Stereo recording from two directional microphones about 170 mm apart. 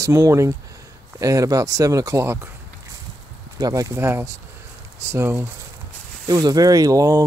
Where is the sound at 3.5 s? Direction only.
20° right (ahead or behind).